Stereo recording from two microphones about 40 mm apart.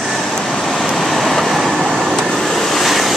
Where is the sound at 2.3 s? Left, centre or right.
Centre.